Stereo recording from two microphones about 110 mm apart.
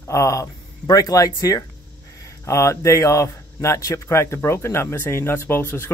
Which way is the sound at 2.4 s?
25° left (ahead or behind).